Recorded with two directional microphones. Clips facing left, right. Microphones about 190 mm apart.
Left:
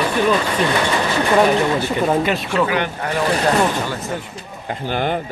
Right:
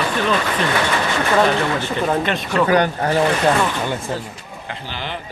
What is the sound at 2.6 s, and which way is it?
Speech, 40° right (ahead or behind).